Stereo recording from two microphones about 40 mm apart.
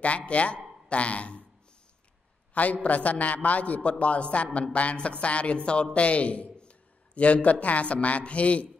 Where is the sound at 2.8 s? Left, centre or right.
Left.